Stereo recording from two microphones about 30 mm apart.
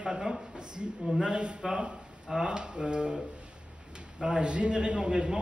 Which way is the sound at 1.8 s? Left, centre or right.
Right.